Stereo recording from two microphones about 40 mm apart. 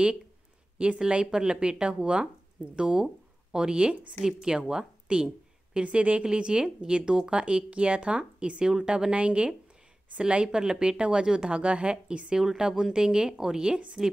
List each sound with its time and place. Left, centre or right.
0.8 s speech: right
1.1 s speech: right
5.9 s speech: right
6.2 s speech: right
12.4 s speech: centre
14.0 s a woman's voice: centre